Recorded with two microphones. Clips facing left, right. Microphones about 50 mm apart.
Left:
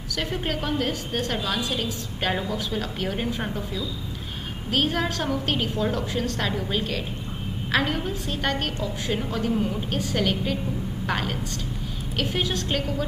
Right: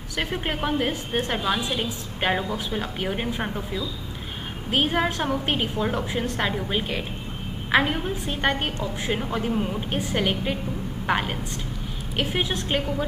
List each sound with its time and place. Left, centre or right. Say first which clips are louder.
0.1 s a woman's voice: even; right